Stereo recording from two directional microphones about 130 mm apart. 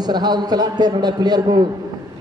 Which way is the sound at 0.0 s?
35° right (ahead or behind).